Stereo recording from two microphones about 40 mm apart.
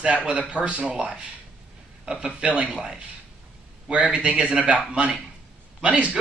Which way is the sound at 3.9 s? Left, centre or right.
Right.